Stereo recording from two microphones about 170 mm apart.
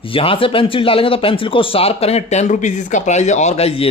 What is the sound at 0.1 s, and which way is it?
Speech, 30° left (ahead or behind).